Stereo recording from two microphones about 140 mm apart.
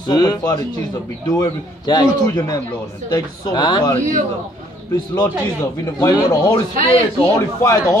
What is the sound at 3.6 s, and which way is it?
Speech, 35° left (ahead or behind).